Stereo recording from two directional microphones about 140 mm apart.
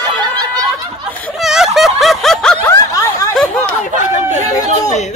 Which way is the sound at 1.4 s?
5° right (ahead or behind).